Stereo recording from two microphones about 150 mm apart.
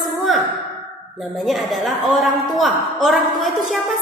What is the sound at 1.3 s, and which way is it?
A woman's voice, centre (ahead or behind).